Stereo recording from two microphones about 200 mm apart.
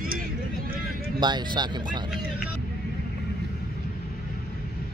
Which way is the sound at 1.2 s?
20° right (ahead or behind).